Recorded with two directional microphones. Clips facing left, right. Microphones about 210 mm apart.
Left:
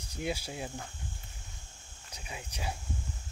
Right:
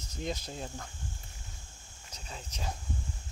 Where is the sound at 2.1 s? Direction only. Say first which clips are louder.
Left 1 dB; 10° left (ahead or behind).